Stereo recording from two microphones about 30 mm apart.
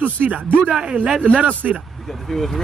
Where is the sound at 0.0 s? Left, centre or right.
Right.